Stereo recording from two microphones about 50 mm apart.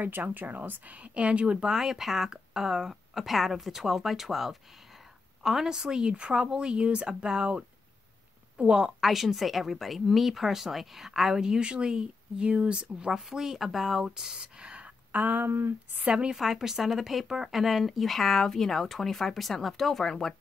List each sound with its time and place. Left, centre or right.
0.0 s speech: right
1.7 s a woman's voice: centre
9.0 s speech: centre; by 14.9 s right
15.1 s speech: right
15.4 s speech: right
16.1 s speech: centre